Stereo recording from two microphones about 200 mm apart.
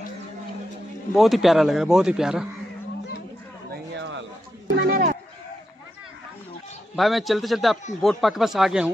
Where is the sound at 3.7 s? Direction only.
65° right (ahead or behind).